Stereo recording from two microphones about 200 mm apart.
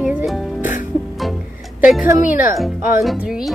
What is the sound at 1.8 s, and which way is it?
Speech, 5° right (ahead or behind).